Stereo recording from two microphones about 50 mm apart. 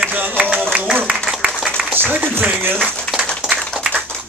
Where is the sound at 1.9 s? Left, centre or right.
Right.